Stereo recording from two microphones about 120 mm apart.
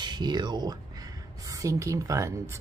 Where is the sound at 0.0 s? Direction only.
35° right (ahead or behind).